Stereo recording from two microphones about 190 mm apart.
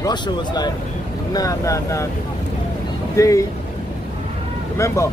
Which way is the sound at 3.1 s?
15° left (ahead or behind).